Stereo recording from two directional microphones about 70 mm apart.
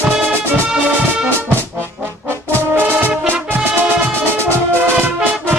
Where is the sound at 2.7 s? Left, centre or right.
Right.